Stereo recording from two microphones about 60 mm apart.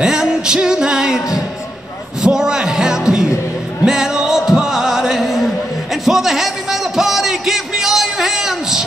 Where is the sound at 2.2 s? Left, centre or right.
Centre.